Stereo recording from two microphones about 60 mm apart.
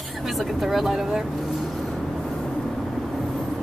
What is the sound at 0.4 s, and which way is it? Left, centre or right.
Speech, centre.